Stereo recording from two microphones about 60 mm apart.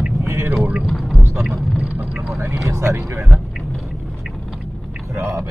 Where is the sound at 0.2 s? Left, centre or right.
Right.